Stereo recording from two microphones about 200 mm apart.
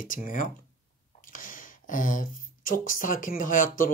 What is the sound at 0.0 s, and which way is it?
Speech, 40° left (ahead or behind).